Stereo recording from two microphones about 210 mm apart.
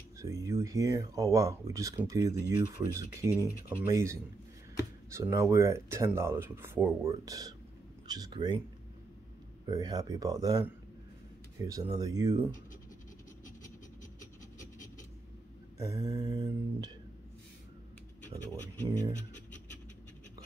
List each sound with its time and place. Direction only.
0.2 s speech: 15° right (ahead or behind)
9.7 s speech: 20° right (ahead or behind)
11.6 s speech: 15° right (ahead or behind)
15.8 s speech: 15° right (ahead or behind)